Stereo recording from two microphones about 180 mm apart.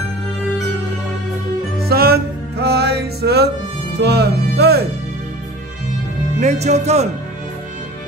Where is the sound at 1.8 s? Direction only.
60° right (ahead or behind).